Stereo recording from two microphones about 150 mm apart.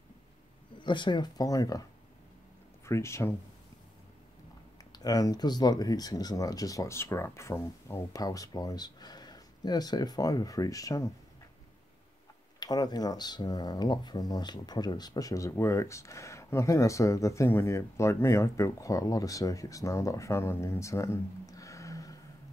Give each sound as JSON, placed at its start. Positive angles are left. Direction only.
{"t": 0.7, "sound": "speech", "side_deg": 30}
{"t": 4.9, "sound": "speech", "side_deg": 25}
{"t": 12.5, "sound": "speech", "side_deg": 25}